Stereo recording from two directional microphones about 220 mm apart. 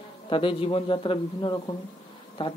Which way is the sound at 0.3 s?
25° left (ahead or behind).